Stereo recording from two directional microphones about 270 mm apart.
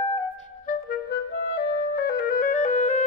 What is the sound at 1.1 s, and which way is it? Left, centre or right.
Clarinet, left.